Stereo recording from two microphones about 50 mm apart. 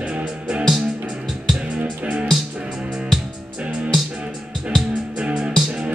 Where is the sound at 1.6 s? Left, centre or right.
Right.